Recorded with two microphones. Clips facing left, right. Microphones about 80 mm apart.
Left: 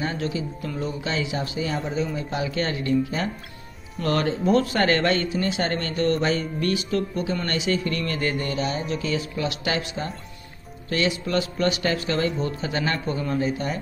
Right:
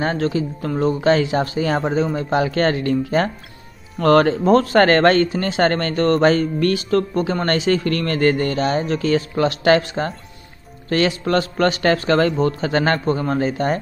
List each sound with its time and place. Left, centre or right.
0.0 s speech: right